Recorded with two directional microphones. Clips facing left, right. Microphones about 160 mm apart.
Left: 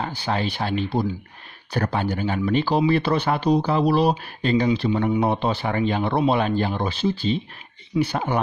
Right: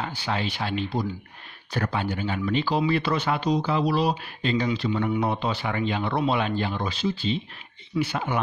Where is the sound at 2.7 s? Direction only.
30° left (ahead or behind).